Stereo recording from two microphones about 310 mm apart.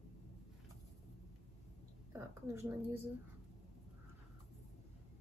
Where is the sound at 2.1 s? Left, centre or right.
Centre.